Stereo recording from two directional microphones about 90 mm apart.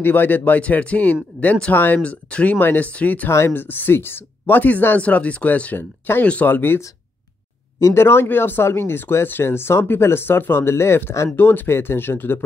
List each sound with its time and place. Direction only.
0.0 s speech: 20° left (ahead or behind)
3.3 s speech: 25° left (ahead or behind)
7.8 s speech: 30° left (ahead or behind)